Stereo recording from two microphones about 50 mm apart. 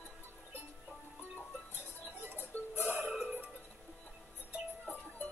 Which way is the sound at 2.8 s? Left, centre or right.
Right.